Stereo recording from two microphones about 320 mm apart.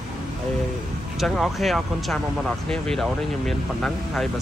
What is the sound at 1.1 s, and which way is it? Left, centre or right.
Speech, centre.